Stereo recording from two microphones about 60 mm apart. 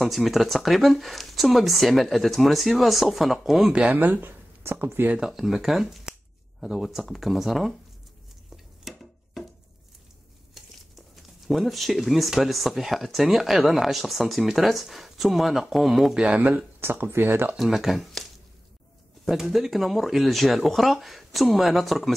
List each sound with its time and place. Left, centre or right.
0.0 s speech: centre
3.7 s speech: right
5.2 s speech: centre
8.5 s a sound: centre
10.5 s speech: centre
16.2 s speech: right
16.8 s speech: right
17.6 s speech: centre